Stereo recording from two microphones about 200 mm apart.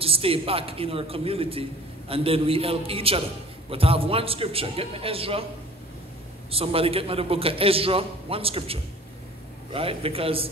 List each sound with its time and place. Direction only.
0.0 s a man's voice: 30° right (ahead or behind)
6.5 s a man's voice: 30° right (ahead or behind)